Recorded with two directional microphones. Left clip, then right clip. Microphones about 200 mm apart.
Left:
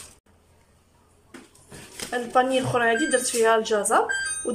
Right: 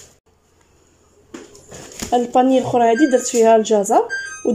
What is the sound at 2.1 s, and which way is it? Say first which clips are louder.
Speech: right 7 dB; 20° right (ahead or behind).